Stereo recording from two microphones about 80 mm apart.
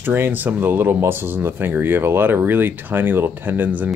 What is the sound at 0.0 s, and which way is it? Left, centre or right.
Speech, right.